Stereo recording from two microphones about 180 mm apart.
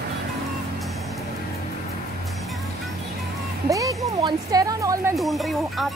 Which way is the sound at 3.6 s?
20° right (ahead or behind).